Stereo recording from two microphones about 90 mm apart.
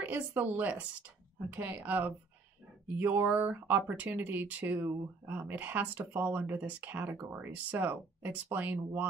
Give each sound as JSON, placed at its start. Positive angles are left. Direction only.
{"t": 0.0, "sound": "speech", "side_deg": -20}